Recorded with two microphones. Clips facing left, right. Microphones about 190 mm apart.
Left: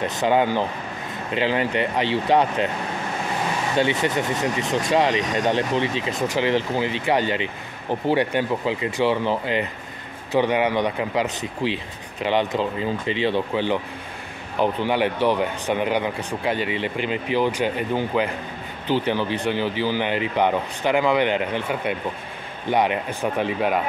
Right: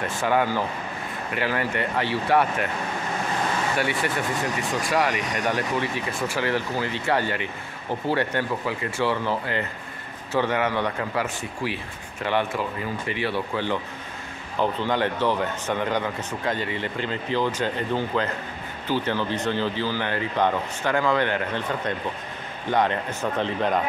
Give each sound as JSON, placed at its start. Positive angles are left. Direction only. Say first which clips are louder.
{"t": 0.0, "sound": "speech", "louder": "left 3 dB", "side_deg": 20}
{"t": 3.7, "sound": "speech", "louder": "left 4 dB", "side_deg": 20}